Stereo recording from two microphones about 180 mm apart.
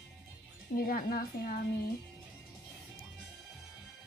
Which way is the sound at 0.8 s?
55° left (ahead or behind).